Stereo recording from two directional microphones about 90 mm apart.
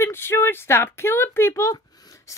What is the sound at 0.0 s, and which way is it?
Speech, 25° left (ahead or behind).